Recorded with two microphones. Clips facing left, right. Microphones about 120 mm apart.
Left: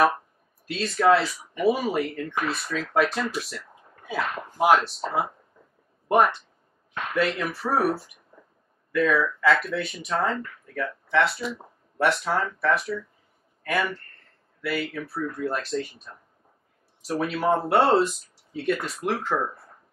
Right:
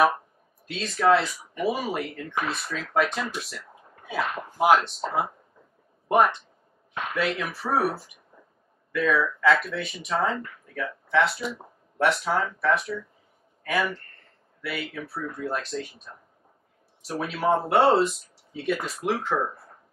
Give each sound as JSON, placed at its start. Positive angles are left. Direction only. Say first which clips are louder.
{"t": 0.7, "sound": "speech", "louder": "left 1 dB", "side_deg": 0}